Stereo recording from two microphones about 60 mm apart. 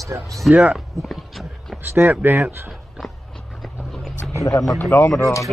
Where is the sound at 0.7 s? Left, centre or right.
Centre.